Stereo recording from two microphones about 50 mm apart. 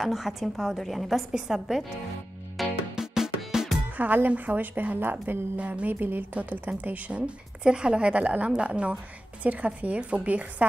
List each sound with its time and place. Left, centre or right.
0.0 s a woman's voice: centre
2.5 s music: centre
3.9 s speech: right
5.6 s a woman's voice: right
5.9 s speech: right
6.3 s a woman's voice: right